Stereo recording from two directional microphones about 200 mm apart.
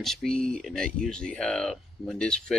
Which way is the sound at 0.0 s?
Centre (ahead or behind).